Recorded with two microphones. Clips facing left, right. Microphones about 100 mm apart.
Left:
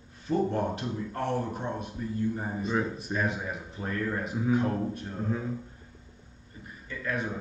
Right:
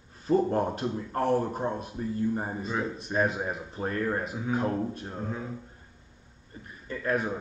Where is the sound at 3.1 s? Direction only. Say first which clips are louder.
Right 4 dB; 35° right (ahead or behind).